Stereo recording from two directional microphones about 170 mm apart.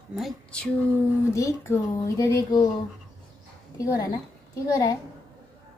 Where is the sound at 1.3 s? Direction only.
15° left (ahead or behind).